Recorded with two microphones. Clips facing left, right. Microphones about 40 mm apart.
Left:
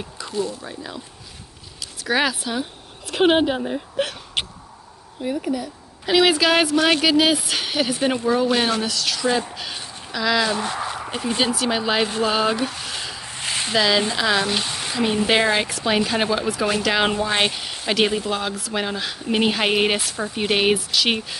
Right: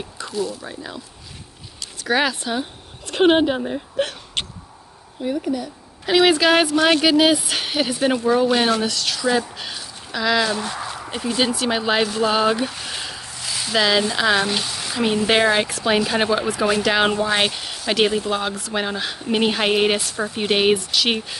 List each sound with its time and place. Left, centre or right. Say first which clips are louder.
0.3 s speech: even; centre
0.6 s speech: right 1 dB; centre
5.5 s speech: right 1 dB; centre
11.3 s speech: right 1 dB; centre
13.3 s a sound: left 4 dB; left
13.7 s speech: right 1 dB; centre
14.5 s a sound: even; centre
15.4 s speech: right 2 dB; centre